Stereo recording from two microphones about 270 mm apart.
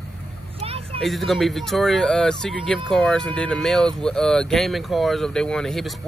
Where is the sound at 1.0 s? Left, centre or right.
Centre.